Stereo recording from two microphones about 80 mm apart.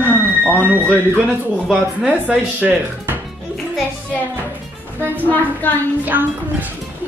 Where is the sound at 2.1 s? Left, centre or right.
Centre.